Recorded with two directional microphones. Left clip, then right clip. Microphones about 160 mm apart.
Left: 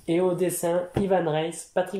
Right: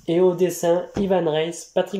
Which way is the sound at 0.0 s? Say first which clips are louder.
Right 5 dB; centre (ahead or behind).